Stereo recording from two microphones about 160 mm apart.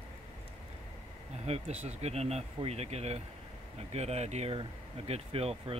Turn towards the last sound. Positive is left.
turn(degrees=-35)  # may be behind; listen again after turning